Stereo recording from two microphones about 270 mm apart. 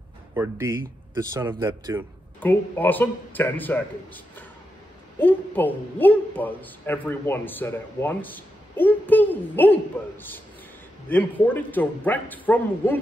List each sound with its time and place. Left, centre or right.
0.3 s speech: centre
2.4 s a woman's voice: centre